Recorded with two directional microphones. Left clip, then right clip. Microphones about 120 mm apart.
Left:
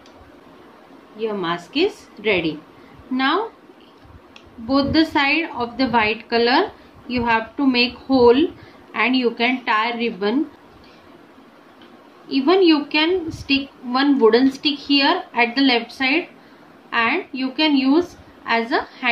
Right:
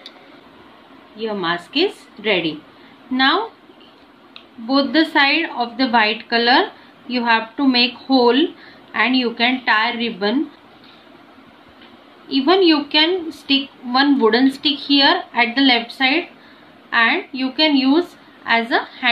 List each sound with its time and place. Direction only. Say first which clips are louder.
1.2 s a woman's voice: right 2 dB; centre (ahead or behind)
4.6 s a woman's voice: right 1 dB; 5° left (ahead or behind)
12.3 s a woman's voice: right 1 dB; centre (ahead or behind)